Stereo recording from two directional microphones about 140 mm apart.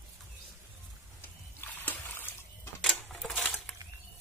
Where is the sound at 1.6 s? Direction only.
15° left (ahead or behind).